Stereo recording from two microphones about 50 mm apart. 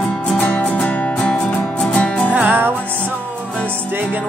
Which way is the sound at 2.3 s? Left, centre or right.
Right.